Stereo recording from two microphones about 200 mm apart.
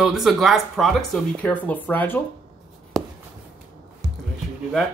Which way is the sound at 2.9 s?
Centre (ahead or behind).